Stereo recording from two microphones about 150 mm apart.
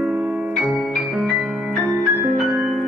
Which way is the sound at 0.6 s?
Centre (ahead or behind).